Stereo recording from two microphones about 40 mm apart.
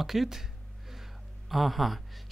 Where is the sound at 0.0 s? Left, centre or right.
Centre.